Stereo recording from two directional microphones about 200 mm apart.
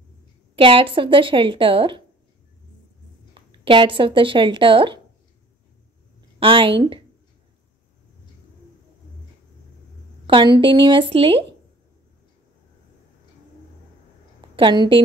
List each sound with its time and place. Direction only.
0.6 s a woman's voice: 25° right (ahead or behind)
3.3 s speech: 25° right (ahead or behind)
6.4 s a woman's voice: 25° right (ahead or behind)
10.2 s a woman's voice: 25° right (ahead or behind)
14.5 s a woman's voice: 25° right (ahead or behind)